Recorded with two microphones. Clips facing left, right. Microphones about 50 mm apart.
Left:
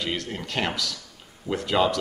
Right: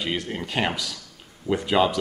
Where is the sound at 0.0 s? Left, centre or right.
Centre.